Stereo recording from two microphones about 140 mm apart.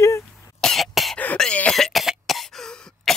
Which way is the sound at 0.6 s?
Centre (ahead or behind).